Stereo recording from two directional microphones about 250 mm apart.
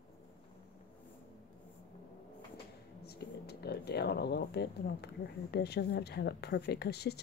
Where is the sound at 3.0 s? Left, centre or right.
Left.